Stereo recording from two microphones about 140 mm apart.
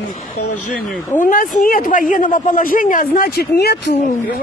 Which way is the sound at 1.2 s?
75° left (ahead or behind).